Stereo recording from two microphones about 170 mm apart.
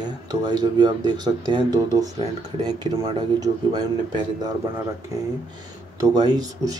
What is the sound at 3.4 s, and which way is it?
Speech, 25° right (ahead or behind).